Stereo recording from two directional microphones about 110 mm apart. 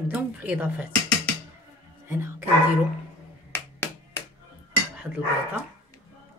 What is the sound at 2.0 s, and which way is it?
Speech, 25° right (ahead or behind).